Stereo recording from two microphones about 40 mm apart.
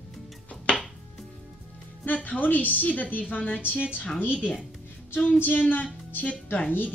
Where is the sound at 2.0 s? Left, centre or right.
Left.